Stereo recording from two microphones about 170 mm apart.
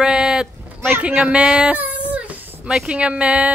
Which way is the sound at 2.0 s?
10° right (ahead or behind).